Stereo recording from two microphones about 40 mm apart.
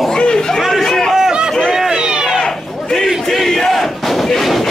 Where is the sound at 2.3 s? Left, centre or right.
Centre.